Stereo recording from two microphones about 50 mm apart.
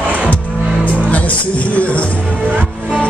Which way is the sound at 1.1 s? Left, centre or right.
Left.